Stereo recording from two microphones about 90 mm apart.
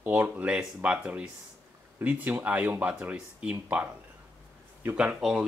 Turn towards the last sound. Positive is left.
turn(degrees=-10)  # may be behind; listen again after turning